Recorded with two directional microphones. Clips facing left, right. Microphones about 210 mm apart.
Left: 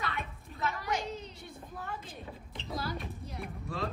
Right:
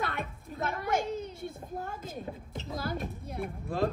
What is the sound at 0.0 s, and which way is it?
Children playing, 50° right (ahead or behind).